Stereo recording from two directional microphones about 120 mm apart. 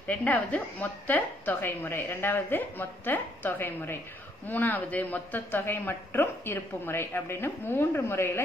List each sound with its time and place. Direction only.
0.0 s a woman's voice: 10° left (ahead or behind)